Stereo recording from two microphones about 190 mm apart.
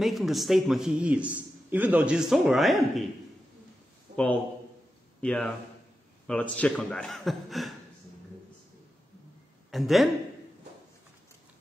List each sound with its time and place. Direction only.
0.0 s a man's voice: centre (ahead or behind)
4.1 s a sound: 40° right (ahead or behind)
5.2 s a man's voice: 5° left (ahead or behind)
9.7 s speech: centre (ahead or behind)